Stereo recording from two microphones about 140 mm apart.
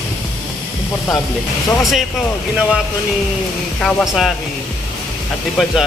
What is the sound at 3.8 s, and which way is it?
Speech, centre (ahead or behind).